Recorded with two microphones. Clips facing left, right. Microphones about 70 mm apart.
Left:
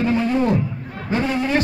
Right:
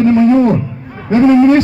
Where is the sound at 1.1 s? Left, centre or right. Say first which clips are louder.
Right 13 dB; right.